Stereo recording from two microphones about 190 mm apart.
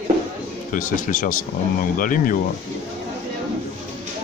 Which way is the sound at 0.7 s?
45° left (ahead or behind).